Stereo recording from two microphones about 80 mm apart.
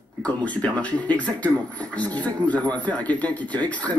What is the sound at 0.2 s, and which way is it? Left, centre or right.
Speech, centre.